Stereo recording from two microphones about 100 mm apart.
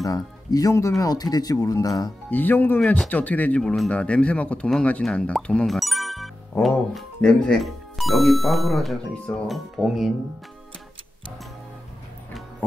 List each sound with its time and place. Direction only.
0.0 s speech: 40° left (ahead or behind)
2.3 s speech: 20° left (ahead or behind); by 10.1 s centre (ahead or behind)